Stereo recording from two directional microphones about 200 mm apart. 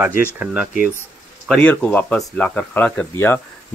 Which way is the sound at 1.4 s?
5° left (ahead or behind).